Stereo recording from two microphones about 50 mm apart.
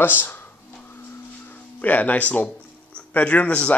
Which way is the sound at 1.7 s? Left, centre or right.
Left.